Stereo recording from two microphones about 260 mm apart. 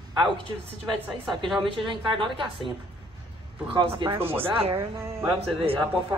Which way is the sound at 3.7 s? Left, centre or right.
Centre.